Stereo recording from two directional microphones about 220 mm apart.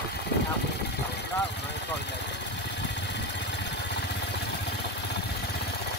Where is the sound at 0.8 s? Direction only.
50° left (ahead or behind).